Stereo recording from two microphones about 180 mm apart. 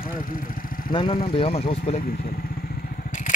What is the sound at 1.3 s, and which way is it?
Speech, 35° left (ahead or behind).